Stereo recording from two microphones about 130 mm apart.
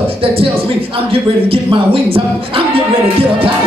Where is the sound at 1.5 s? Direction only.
45° right (ahead or behind).